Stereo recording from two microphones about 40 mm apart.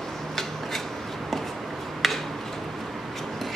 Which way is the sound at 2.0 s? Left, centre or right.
Centre.